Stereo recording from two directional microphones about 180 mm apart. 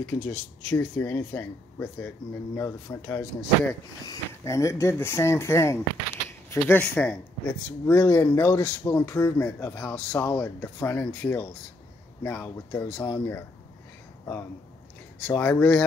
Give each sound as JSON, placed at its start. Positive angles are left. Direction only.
{"t": 0.0, "sound": "a man's voice", "side_deg": 10}
{"t": 15.1, "sound": "a man's voice", "side_deg": 10}